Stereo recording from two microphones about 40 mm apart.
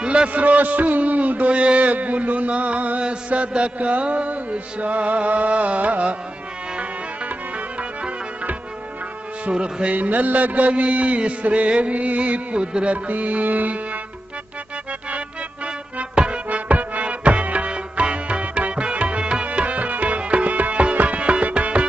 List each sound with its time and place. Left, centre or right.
0.0 s a sound: right
0.3 s mantra: right
9.5 s a sound: right
9.9 s mantra: right
13.1 s music: right
15.0 s music: right
19.4 s music: right